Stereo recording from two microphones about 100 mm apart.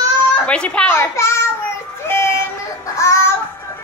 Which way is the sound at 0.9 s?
25° left (ahead or behind).